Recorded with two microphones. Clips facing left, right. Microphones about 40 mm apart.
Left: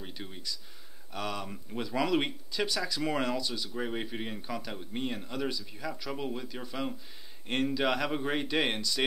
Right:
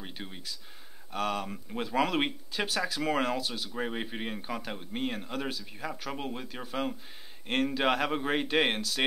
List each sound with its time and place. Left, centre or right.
0.0 s a sound: centre
1.1 s speech: right
3.7 s speech: centre
7.4 s a man's voice: centre
7.7 s speech: right